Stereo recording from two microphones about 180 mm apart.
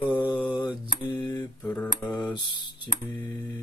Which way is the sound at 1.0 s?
25° left (ahead or behind).